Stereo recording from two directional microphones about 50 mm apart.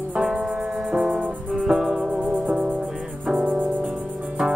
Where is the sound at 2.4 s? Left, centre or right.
Right.